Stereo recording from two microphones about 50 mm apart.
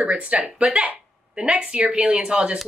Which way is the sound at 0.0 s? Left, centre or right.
Right.